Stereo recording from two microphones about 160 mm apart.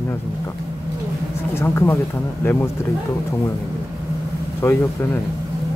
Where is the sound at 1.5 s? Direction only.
15° left (ahead or behind).